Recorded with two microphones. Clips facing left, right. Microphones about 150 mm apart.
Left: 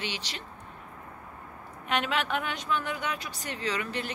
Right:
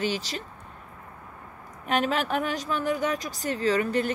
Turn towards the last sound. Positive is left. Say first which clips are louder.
# right 8 dB
turn(degrees=-45)  # may be behind; listen again after turning